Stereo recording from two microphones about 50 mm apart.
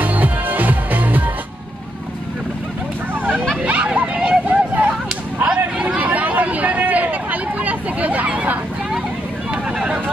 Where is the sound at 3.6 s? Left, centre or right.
Right.